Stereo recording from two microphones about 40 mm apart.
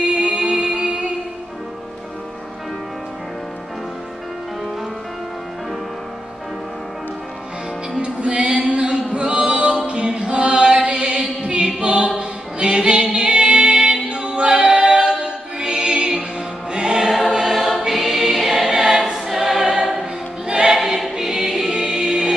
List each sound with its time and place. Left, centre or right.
0.0 s music: right
8.0 s music: right
9.8 s chant: right
11.8 s choir: right
12.2 s music: right
17.5 s choir: centre
20.7 s choir: centre